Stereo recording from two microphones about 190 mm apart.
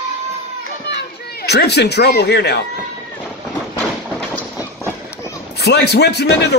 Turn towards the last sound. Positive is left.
turn(degrees=60)  # may be behind; listen again after turning